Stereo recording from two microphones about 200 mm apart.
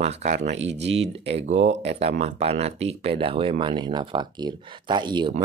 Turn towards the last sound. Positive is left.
turn(degrees=-20)  # may be behind; listen again after turning